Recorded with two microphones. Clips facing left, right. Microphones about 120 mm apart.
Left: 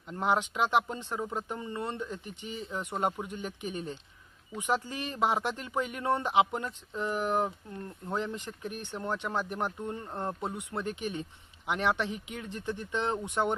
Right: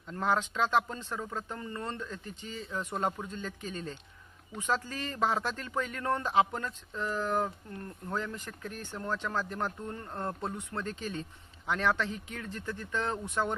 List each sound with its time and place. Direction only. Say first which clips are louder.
0.1 s speech: left 1 dB; 20° left (ahead or behind)